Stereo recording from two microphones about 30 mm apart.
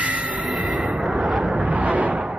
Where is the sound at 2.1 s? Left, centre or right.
Right.